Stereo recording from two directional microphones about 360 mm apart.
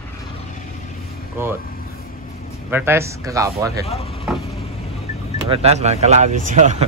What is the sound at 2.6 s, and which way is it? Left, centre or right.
Speech, centre.